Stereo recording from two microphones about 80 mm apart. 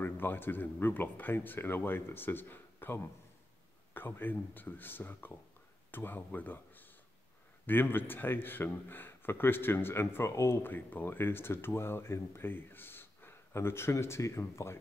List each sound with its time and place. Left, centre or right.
0.0 s a man's voice: left